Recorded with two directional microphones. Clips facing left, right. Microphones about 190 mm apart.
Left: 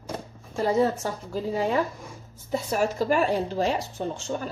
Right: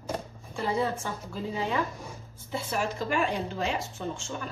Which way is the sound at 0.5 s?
40° left (ahead or behind).